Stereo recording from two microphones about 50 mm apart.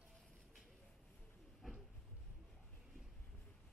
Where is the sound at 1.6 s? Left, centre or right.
Centre.